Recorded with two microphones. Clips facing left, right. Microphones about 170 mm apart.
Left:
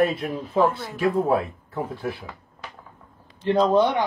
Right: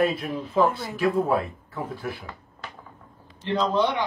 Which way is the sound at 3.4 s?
45° left (ahead or behind).